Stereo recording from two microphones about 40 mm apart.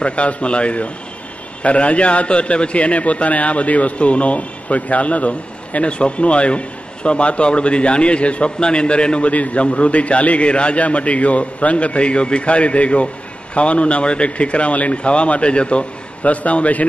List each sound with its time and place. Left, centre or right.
0.0 s a man's voice: left